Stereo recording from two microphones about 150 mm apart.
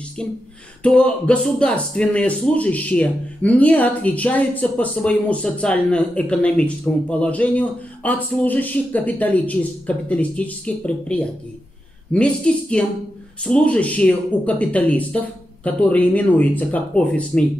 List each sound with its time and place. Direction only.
0.8 s a man's voice: 10° left (ahead or behind)